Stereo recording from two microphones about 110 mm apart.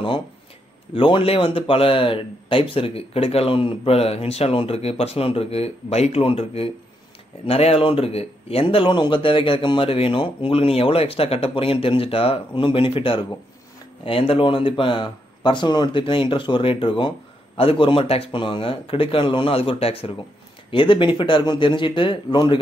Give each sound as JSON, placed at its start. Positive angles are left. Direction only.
{"t": 0.9, "sound": "speech", "side_deg": 55}
{"t": 20.7, "sound": "speech", "side_deg": 50}